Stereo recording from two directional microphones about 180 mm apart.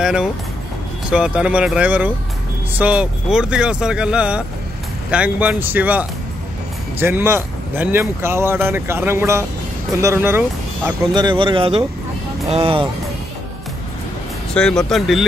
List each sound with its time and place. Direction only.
0.0 s speech: 5° right (ahead or behind)
11.1 s speech: 25° right (ahead or behind)
14.5 s speech: 5° left (ahead or behind)